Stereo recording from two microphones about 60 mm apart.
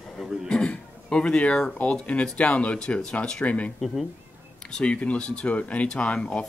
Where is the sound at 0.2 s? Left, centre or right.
Centre.